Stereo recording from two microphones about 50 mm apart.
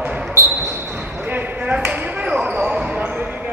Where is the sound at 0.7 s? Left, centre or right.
Right.